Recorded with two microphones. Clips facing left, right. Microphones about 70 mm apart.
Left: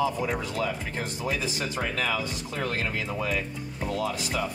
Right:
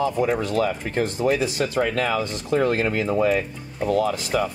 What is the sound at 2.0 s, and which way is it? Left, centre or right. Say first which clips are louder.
Speech: right 6 dB; right.